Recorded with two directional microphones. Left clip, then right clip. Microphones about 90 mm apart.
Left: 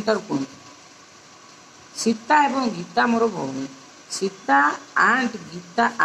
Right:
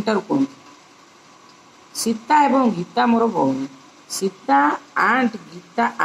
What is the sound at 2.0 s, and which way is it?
A woman's voice, 25° right (ahead or behind).